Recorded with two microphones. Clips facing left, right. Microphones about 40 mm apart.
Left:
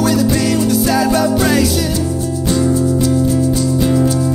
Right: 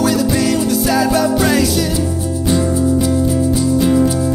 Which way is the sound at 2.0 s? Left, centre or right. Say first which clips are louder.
Left 1 dB; centre.